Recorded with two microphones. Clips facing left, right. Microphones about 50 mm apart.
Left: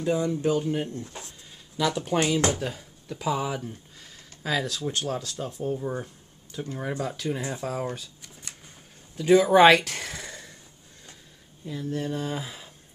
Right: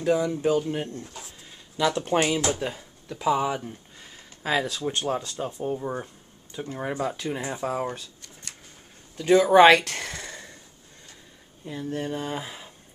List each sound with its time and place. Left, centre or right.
0.4 s speech: right
1.8 s speech: centre
2.1 s speech: right
8.0 s shuffling cards: centre
9.1 s a sound: centre
11.6 s speech: centre